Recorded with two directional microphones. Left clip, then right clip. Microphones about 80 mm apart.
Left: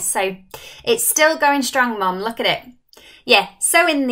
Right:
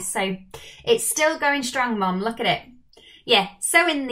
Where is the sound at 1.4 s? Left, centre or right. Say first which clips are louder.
Left 6 dB; left.